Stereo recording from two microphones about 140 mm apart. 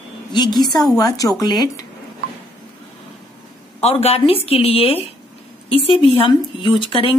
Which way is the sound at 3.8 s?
45° left (ahead or behind).